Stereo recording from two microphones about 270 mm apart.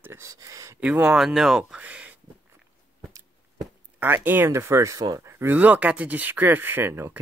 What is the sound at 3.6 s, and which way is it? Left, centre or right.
Speech, centre.